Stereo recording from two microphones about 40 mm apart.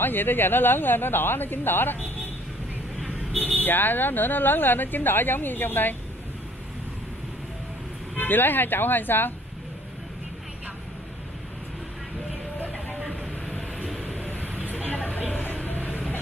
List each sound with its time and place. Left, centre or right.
0.0 s speech: left
3.3 s speech: right
3.6 s speech: left
8.2 s speech: left
14.0 s vehicle: left
15.0 s a sound: left